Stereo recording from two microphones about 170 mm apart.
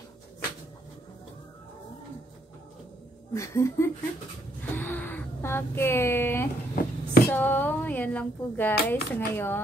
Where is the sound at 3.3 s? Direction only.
15° left (ahead or behind).